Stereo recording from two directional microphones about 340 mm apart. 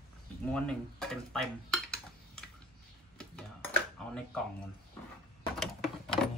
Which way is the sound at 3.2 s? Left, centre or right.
Centre.